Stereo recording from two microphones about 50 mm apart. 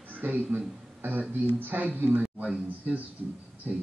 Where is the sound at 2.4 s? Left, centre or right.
Right.